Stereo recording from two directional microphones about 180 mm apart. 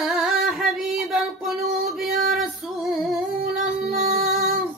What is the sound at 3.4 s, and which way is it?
Music, 55° right (ahead or behind).